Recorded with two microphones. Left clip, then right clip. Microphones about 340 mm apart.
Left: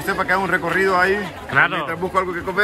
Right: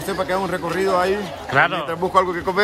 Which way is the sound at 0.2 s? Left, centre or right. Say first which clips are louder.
Left 3 dB; centre.